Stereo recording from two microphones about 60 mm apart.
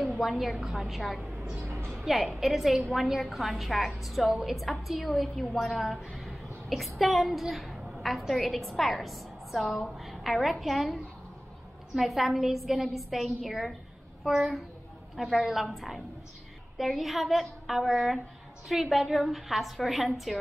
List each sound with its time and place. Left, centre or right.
0.0 s a woman's voice: centre
1.3 s vehicle: centre
1.6 s a sound: right
2.0 s a woman's voice: centre